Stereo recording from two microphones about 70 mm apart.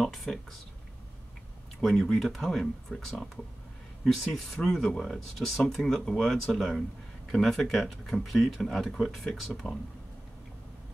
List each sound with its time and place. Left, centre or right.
0.0 s speech: centre
1.8 s speech: centre